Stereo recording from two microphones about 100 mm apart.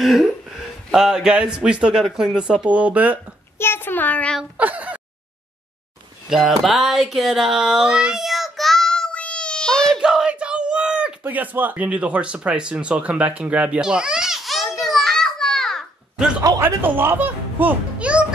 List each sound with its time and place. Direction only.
0.0 s speech: centre (ahead or behind)
3.5 s a child's voice: 25° left (ahead or behind)
4.6 s speech: 15° right (ahead or behind)
6.2 s a sound: centre (ahead or behind)
10.0 s speech: 5° right (ahead or behind)
14.9 s a sound: centre (ahead or behind)
16.6 s a child's voice: 20° right (ahead or behind)